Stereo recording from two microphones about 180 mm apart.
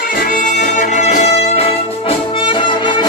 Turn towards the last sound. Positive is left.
turn(degrees=25)  # may be behind; listen again after turning